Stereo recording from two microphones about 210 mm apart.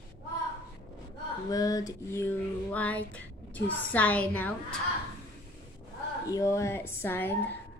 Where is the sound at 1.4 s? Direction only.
15° left (ahead or behind).